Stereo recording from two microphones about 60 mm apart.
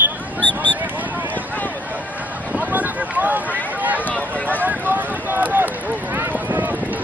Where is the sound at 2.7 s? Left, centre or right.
Right.